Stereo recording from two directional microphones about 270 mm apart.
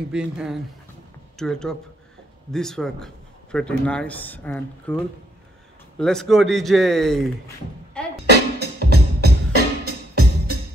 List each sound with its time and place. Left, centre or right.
0.1 s speech: centre
8.0 s music: centre
8.3 s music: right